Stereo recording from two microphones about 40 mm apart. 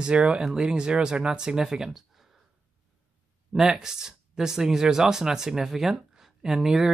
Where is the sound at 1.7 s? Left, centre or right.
Centre.